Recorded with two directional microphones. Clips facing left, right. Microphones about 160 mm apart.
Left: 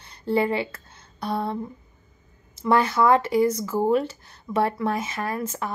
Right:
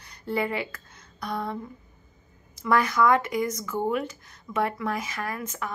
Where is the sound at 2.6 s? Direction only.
30° left (ahead or behind).